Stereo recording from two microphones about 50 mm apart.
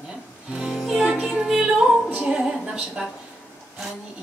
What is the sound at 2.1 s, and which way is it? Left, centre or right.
Speech, centre.